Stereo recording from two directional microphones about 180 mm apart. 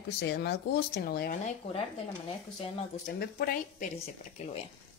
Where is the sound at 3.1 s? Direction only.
55° left (ahead or behind); by 4.7 s 35° left (ahead or behind).